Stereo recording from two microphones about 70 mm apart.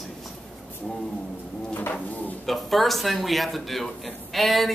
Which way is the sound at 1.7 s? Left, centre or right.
Left.